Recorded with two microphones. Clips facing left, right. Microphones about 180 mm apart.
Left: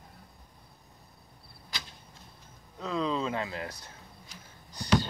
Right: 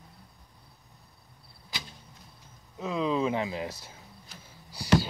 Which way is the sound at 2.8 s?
15° right (ahead or behind).